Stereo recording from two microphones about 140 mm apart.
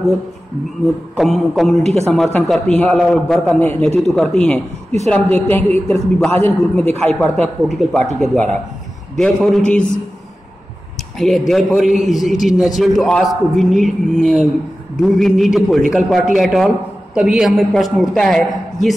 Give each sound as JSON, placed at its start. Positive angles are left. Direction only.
{"t": 1.1, "sound": "a woman's voice", "side_deg": 0}
{"t": 1.8, "sound": "speech", "side_deg": -50}
{"t": 2.0, "sound": "a woman's voice", "side_deg": 5}
{"t": 4.0, "sound": "a woman's voice", "side_deg": 0}
{"t": 11.1, "sound": "a woman's voice", "side_deg": 0}